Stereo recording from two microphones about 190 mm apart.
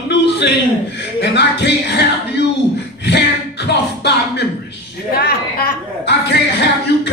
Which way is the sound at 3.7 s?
60° left (ahead or behind).